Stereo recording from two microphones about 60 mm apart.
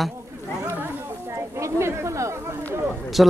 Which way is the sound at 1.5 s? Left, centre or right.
Right.